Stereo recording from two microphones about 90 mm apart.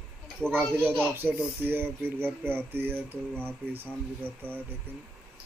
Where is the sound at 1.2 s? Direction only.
20° right (ahead or behind).